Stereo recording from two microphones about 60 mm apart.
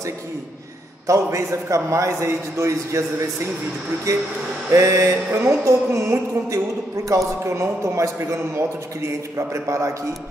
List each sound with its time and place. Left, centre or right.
1.0 s a man's voice: right
4.6 s mantra: right
7.1 s a man's voice: right